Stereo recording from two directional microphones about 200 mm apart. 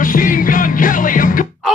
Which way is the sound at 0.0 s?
40° left (ahead or behind).